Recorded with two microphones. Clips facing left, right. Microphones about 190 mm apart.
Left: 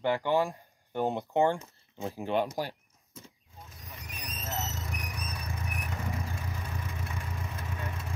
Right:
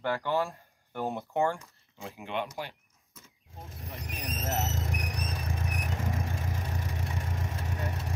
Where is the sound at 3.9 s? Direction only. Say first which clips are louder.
Right 6 dB; 55° right (ahead or behind).